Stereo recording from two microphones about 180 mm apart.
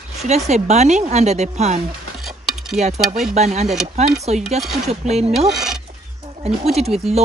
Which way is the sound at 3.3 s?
40° right (ahead or behind).